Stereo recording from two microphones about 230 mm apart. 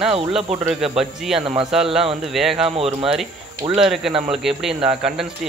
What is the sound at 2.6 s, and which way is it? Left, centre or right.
Speech, right.